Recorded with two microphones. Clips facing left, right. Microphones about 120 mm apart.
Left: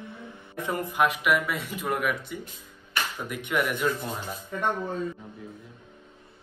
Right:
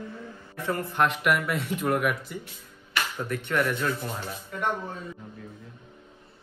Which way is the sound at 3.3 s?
10° left (ahead or behind).